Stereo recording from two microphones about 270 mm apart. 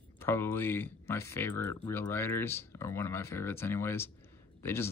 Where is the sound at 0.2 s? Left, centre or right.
Centre.